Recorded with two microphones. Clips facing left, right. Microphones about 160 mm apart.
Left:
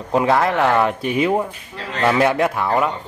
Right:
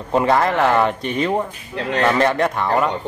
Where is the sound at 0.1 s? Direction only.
Centre (ahead or behind).